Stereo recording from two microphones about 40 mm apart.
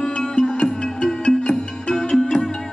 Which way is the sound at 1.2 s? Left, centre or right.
Centre.